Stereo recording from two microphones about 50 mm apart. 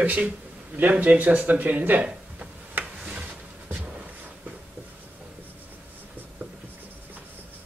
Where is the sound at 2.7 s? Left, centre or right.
Right.